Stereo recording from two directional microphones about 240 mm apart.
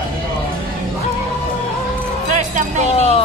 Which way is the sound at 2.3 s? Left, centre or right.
Right.